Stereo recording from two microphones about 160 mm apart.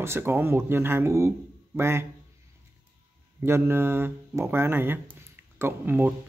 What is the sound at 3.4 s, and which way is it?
Speech, 15° right (ahead or behind).